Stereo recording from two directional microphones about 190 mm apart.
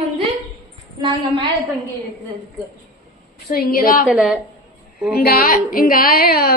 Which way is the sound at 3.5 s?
50° left (ahead or behind).